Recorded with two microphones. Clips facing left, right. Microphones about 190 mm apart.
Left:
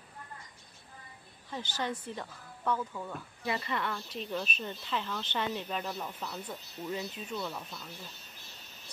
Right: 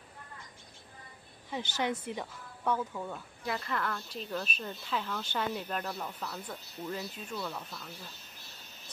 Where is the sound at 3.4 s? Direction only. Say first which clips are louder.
Left 1 dB; 5° left (ahead or behind).